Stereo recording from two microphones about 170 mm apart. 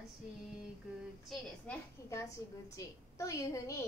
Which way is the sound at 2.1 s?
20° left (ahead or behind).